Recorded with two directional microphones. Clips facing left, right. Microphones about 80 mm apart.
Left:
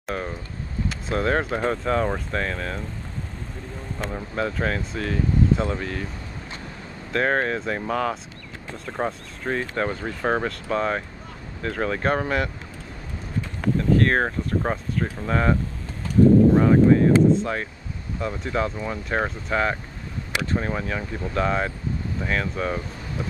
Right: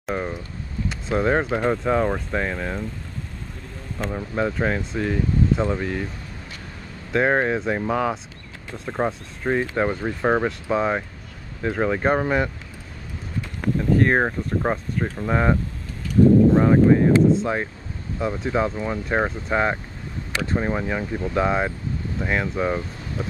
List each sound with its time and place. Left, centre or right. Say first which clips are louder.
0.1 s vehicle: right 3 dB; centre
1.1 s speech: right 3 dB; centre
4.1 s speech: right 3 dB; centre
7.1 s speech: right 3 dB; centre
13.7 s speech: right 1 dB; centre
16.5 s speech: even; centre